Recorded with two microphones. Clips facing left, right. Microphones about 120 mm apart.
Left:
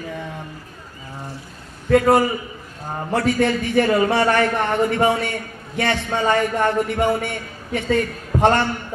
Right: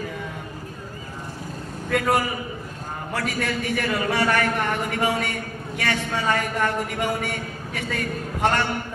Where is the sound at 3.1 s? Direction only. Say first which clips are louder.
Left 8 dB; 30° left (ahead or behind).